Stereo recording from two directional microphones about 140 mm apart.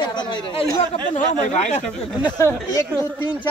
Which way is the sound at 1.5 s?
55° left (ahead or behind).